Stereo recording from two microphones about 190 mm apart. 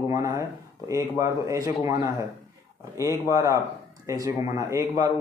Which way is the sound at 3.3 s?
15° right (ahead or behind).